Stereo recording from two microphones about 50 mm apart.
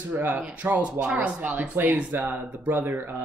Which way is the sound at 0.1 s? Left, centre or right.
Right.